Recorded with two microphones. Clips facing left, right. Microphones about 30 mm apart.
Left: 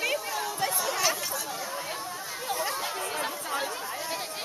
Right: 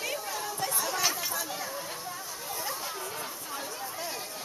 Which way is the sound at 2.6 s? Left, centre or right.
Left.